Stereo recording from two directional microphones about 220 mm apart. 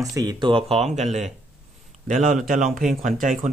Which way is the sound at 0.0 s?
15° right (ahead or behind).